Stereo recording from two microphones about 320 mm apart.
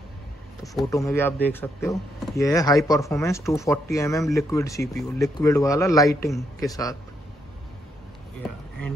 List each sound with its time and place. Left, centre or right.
0.7 s speech: centre